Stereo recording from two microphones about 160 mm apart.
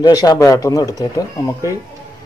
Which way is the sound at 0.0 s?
25° left (ahead or behind).